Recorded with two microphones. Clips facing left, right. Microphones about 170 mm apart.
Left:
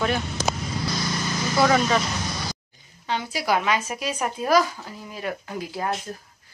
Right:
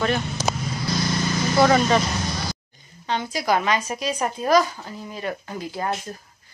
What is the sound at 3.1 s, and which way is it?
Speech, 10° left (ahead or behind).